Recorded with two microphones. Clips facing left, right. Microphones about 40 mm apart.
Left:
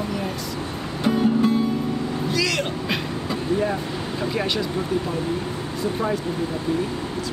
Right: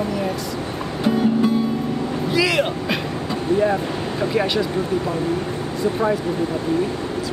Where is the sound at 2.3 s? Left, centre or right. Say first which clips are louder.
Right 6 dB; centre.